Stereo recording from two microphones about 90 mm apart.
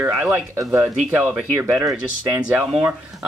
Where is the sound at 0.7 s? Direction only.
25° right (ahead or behind).